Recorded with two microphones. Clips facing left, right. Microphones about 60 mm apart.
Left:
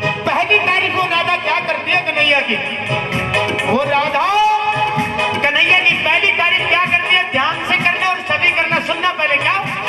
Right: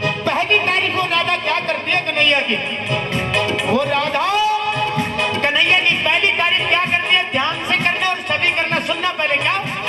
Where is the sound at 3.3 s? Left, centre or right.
Left.